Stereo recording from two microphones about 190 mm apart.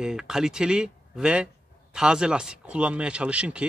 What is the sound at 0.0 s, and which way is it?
Speech, 5° right (ahead or behind).